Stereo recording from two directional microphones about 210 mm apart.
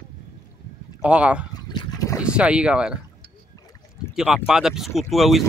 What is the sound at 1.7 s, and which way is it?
Boat, 15° left (ahead or behind).